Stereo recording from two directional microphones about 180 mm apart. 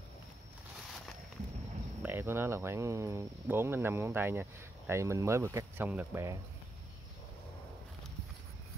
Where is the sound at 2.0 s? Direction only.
10° right (ahead or behind).